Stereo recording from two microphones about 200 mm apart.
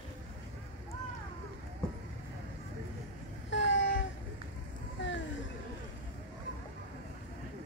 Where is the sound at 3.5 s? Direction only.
65° left (ahead or behind).